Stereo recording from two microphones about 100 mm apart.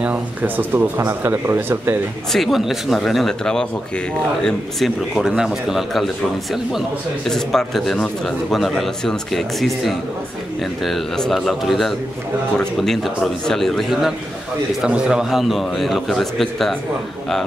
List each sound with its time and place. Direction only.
0.0 s speech: 15° right (ahead or behind)
2.3 s speech: centre (ahead or behind)
7.2 s speech: 5° left (ahead or behind)